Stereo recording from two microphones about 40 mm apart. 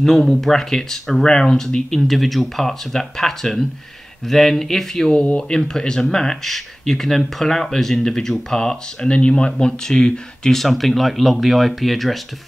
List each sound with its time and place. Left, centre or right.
0.0 s speech: centre
2.0 s speech: centre
5.1 s speech: left
5.5 s speech: centre
10.6 s speech: centre